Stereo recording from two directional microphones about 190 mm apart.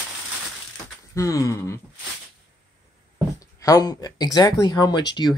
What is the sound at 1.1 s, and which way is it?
Speech, 15° left (ahead or behind).